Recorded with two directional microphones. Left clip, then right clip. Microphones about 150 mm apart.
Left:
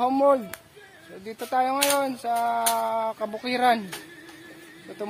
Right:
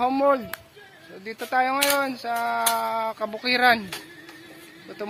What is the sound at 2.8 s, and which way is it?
Speech, 15° left (ahead or behind).